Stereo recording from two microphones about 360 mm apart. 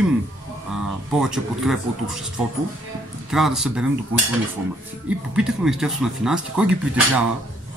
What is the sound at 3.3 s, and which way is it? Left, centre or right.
Speech, centre.